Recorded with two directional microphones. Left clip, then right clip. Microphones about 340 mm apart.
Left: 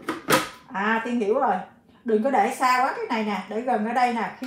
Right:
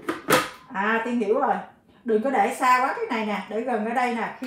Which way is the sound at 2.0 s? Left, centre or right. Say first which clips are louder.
Left 1 dB; centre.